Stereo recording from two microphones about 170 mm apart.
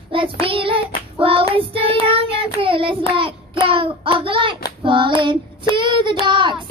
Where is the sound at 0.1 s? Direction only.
30° right (ahead or behind).